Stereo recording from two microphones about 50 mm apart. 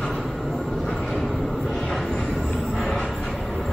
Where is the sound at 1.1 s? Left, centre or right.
Centre.